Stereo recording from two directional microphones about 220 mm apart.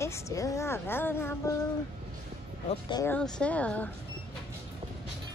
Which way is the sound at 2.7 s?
20° left (ahead or behind).